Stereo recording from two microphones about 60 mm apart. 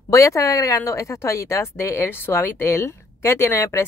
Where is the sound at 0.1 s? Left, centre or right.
Left.